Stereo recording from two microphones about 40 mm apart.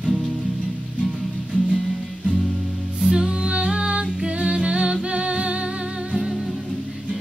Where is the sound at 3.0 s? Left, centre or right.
Centre.